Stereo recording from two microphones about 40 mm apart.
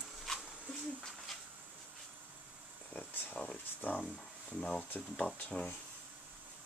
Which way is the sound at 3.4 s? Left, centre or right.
Left.